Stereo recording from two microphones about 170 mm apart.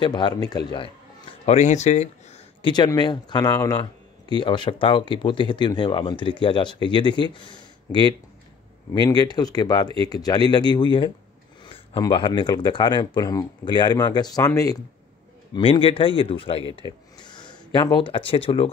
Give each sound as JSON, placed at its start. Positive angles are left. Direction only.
{"t": 0.0, "sound": "speech", "side_deg": 25}
{"t": 1.4, "sound": "speech", "side_deg": 40}
{"t": 2.6, "sound": "speech", "side_deg": 25}
{"t": 11.6, "sound": "a sound", "side_deg": 30}
{"t": 12.0, "sound": "speech", "side_deg": 30}
{"t": 15.5, "sound": "speech", "side_deg": 30}
{"t": 16.7, "sound": "a sound", "side_deg": 25}
{"t": 17.7, "sound": "speech", "side_deg": 25}